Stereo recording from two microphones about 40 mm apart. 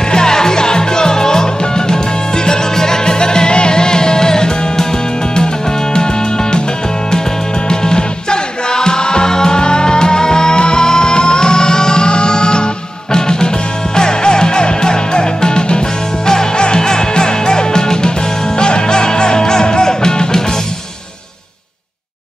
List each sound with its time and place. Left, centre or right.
0.1 s music: centre
7.6 s music: centre